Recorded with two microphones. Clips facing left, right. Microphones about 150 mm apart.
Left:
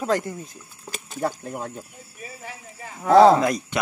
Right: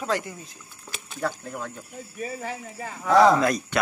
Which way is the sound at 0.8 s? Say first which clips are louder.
Left 5 dB; 45° left (ahead or behind).